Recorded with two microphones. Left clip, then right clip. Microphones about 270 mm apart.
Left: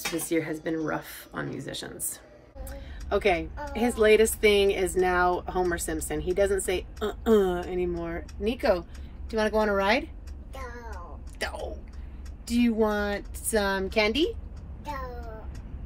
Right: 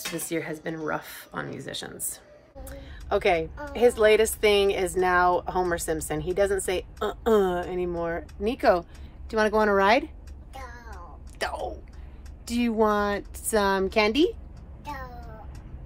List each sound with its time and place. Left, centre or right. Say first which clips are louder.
0.2 s a woman's voice: left 2 dB; centre
3.1 s a woman's voice: right 2 dB; centre
11.3 s a woman's voice: right 3 dB; right